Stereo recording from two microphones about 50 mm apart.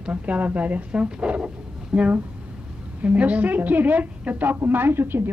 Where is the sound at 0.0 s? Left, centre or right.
Right.